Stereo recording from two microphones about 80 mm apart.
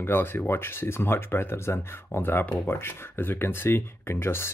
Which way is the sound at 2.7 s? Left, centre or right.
Left.